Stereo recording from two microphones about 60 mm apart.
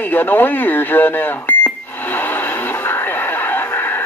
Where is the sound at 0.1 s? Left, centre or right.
Left.